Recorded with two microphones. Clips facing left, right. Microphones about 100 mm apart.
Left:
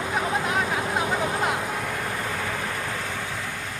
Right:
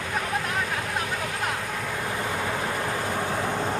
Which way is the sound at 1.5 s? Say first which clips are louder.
Left 3 dB; 15° left (ahead or behind).